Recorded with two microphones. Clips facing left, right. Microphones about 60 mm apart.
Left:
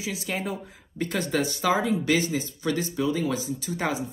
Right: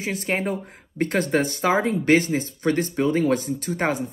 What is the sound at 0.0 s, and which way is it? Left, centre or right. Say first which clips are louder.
Speech: right 5 dB; right.